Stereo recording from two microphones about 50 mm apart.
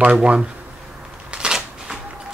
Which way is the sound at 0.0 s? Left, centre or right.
Right.